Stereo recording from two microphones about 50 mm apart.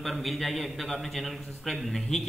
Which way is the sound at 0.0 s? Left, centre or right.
Centre.